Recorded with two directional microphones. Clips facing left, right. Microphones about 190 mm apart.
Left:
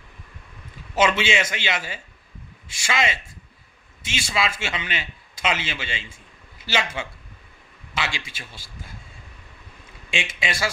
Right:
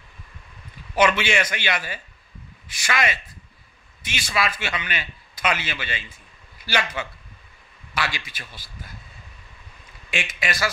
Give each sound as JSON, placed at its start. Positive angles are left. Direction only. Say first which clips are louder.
{"t": 0.9, "sound": "a man's voice", "louder": "right 1 dB", "side_deg": 25}
{"t": 10.1, "sound": "a man's voice", "louder": "even", "side_deg": 25}